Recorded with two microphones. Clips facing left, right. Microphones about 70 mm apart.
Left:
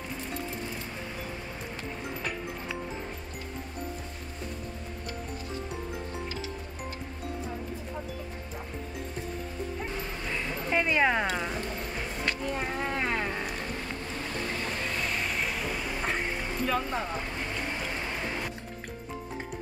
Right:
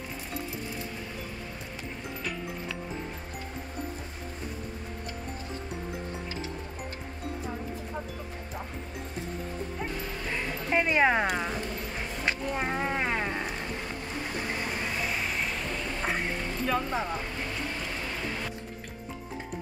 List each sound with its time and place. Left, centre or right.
10.7 s speech: centre
12.3 s speech: right
12.8 s a sound: centre
14.5 s vehicle: centre
16.6 s speech: centre